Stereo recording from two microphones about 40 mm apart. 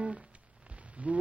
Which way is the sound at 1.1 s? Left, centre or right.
Right.